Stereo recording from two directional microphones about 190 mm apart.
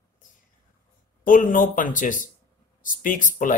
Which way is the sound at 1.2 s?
45° left (ahead or behind).